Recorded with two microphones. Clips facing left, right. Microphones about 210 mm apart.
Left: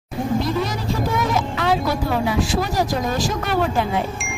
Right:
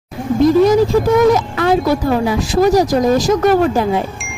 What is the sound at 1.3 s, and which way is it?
Speech, 45° right (ahead or behind).